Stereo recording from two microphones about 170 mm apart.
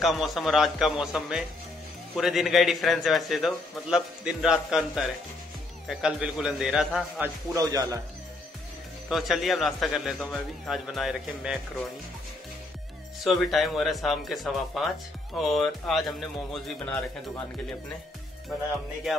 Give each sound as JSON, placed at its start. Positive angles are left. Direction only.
{"t": 0.0, "sound": "a man's voice", "side_deg": 0}
{"t": 7.5, "sound": "speech", "side_deg": -20}
{"t": 9.1, "sound": "a man's voice", "side_deg": 0}
{"t": 13.2, "sound": "a man's voice", "side_deg": 0}